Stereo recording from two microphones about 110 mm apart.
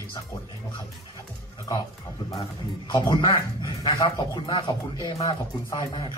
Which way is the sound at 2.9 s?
45° left (ahead or behind).